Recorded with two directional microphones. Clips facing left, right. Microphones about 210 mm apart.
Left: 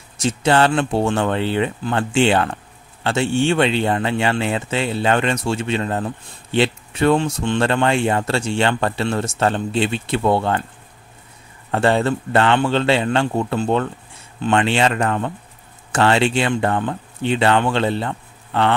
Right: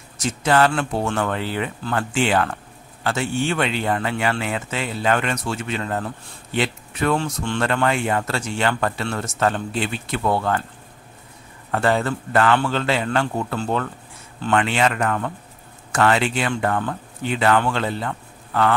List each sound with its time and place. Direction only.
0.2 s speech: 30° left (ahead or behind)
11.7 s speech: 25° left (ahead or behind)